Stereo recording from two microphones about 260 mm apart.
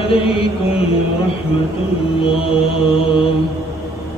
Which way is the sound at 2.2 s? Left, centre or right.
Left.